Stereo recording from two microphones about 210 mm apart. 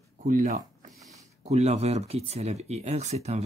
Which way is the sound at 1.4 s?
30° right (ahead or behind).